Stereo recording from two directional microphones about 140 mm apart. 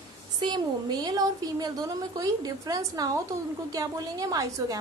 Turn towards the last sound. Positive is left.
turn(degrees=-25)  # may be behind; listen again after turning